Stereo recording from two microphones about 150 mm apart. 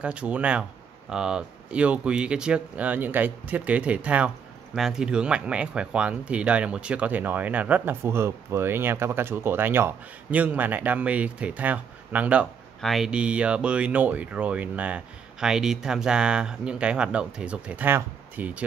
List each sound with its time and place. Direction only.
0.0 s speech: 10° right (ahead or behind)